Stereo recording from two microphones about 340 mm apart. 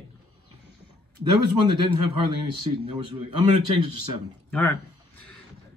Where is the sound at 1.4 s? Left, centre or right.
Right.